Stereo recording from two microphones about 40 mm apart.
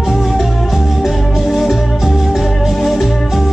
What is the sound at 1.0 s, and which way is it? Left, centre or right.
Music, centre.